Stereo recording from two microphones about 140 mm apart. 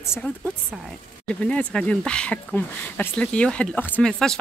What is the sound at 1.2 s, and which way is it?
Speech, 10° left (ahead or behind).